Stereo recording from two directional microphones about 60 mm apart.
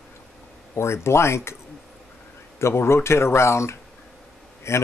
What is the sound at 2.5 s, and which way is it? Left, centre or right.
Speech, left.